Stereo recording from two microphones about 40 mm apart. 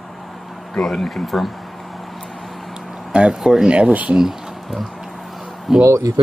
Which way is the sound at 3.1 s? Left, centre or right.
Right.